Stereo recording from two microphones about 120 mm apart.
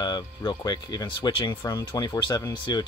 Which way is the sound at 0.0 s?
35° left (ahead or behind).